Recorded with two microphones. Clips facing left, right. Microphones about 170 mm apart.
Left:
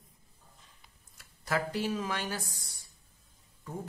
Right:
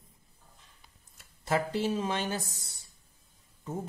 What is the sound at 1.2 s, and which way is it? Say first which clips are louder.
Speech: right 3 dB; 25° right (ahead or behind).